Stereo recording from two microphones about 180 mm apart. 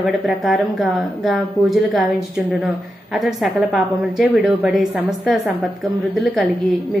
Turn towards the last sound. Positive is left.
turn(degrees=0)  # may be behind; listen again after turning